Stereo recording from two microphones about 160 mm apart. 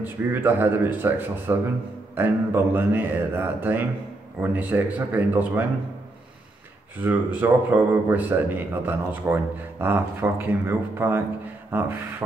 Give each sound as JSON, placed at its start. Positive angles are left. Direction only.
{"t": 0.0, "sound": "a man's voice", "side_deg": -10}
{"t": 7.0, "sound": "a man's voice", "side_deg": -10}